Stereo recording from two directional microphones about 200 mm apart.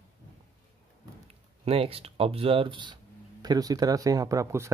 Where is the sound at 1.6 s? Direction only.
30° right (ahead or behind).